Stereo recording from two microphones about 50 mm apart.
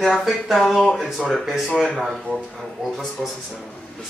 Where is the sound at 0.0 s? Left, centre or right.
Centre.